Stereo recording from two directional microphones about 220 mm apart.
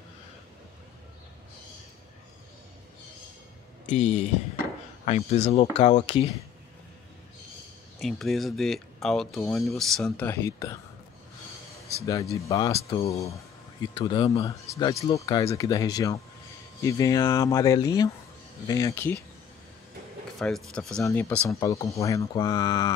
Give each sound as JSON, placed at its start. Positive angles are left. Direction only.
{"t": 3.8, "sound": "speech", "side_deg": 30}
{"t": 8.0, "sound": "speech", "side_deg": 0}
{"t": 12.1, "sound": "speech", "side_deg": 15}
{"t": 20.3, "sound": "speech", "side_deg": 0}